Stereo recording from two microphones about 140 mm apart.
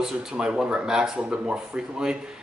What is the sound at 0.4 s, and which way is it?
A man's voice, 5° right (ahead or behind).